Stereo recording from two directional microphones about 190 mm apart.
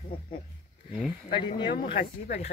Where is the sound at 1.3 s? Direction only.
25° left (ahead or behind).